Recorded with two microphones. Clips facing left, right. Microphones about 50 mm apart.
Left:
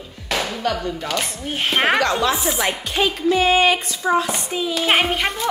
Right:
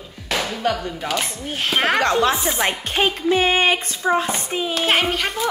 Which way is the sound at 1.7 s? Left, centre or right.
Centre.